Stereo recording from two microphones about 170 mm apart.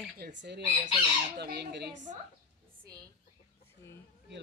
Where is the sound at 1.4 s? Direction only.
70° right (ahead or behind).